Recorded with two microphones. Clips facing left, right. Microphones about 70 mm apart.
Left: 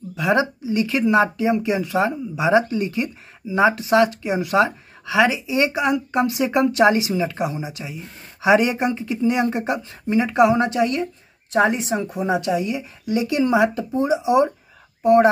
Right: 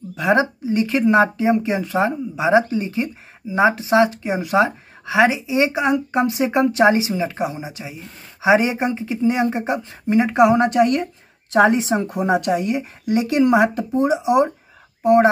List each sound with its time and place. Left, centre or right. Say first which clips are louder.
0.1 s speech: right 2 dB; right
11.5 s speech: right 4 dB; right
11.9 s a woman's voice: right 3 dB; right